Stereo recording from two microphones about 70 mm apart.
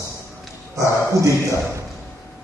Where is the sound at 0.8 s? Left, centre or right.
Right.